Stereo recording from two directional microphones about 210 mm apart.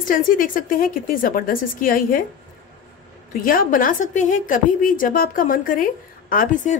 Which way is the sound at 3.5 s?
40° left (ahead or behind).